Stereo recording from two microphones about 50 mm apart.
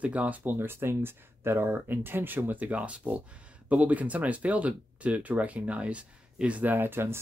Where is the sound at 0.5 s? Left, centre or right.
Right.